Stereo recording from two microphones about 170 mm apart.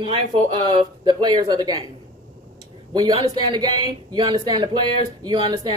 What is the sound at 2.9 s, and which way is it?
A woman's voice, 25° right (ahead or behind).